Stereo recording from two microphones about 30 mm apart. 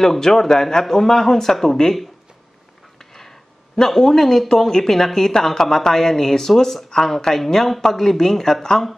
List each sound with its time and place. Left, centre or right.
0.0 s speech: centre
3.0 s a sound: centre
3.7 s speech: centre